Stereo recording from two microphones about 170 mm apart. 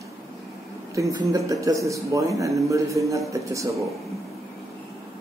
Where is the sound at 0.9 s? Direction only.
20° right (ahead or behind).